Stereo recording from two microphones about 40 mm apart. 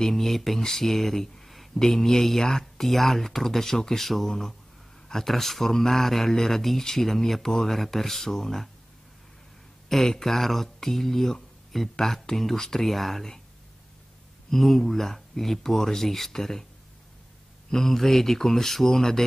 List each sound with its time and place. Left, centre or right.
0.0 s speech: centre
9.8 s speech: centre
14.5 s speech: centre
17.6 s speech: centre